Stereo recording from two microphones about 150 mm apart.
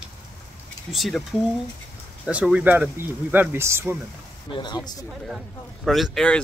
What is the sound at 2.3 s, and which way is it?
Speech, 10° right (ahead or behind).